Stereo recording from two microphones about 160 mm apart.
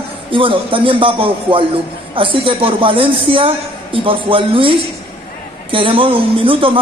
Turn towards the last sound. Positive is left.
turn(degrees=-35)  # may be behind; listen again after turning